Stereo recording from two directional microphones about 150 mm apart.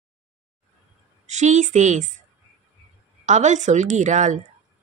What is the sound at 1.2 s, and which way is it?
Speech, 50° right (ahead or behind).